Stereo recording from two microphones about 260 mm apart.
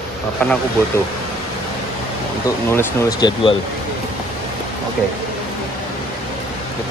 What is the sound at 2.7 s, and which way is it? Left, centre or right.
Speech, centre.